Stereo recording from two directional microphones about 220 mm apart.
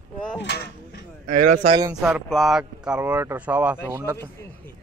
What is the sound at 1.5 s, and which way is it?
Speech, 25° right (ahead or behind).